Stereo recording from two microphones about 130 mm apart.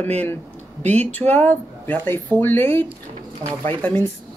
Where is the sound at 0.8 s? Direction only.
10° left (ahead or behind).